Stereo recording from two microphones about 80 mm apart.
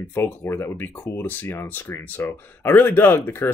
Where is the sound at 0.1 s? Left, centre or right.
Left.